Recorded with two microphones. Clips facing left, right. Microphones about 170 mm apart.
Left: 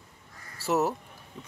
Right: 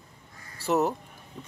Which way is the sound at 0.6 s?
5° left (ahead or behind).